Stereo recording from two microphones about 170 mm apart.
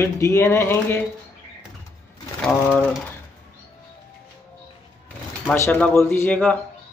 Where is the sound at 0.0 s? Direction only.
15° left (ahead or behind).